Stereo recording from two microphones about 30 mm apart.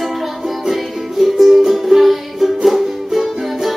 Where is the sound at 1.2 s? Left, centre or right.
Centre.